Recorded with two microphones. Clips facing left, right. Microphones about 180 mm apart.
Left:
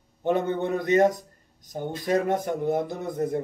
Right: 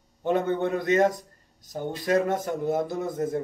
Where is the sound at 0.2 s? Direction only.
15° left (ahead or behind).